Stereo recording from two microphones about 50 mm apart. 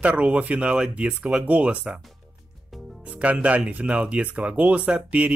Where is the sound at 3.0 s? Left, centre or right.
Right.